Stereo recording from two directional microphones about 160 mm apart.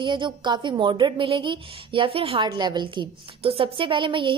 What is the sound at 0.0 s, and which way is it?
A woman's voice, 30° right (ahead or behind).